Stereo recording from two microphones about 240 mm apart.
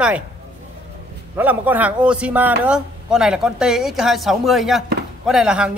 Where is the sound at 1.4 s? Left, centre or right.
Centre.